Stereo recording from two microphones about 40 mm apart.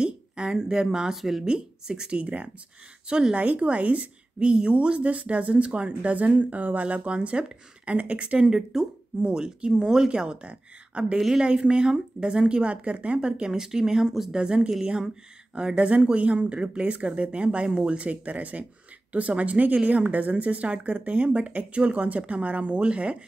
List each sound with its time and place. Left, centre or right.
0.0 s speech: centre
1.1 s speech: centre
1.4 s speech: centre
3.1 s speech: right
3.3 s a woman's voice: right
7.2 s speech: right
8.5 s speech: centre
9.2 s speech: right
11.1 s speech: centre
11.4 s speech: right
13.2 s speech: centre
14.3 s a woman's voice: right